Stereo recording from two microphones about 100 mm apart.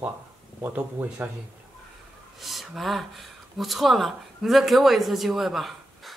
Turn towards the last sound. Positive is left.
turn(degrees=0)  # may be behind; listen again after turning